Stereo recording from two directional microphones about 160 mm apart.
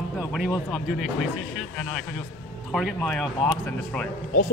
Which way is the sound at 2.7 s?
Centre (ahead or behind).